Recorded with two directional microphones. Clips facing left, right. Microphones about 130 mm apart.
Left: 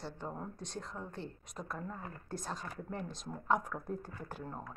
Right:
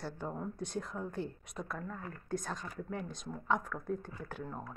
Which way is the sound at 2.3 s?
Centre (ahead or behind).